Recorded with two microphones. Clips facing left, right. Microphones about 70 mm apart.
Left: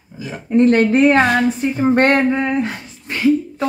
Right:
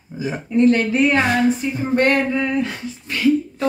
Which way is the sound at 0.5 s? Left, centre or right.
Left.